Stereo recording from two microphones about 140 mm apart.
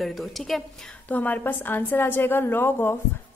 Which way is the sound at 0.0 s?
Centre (ahead or behind).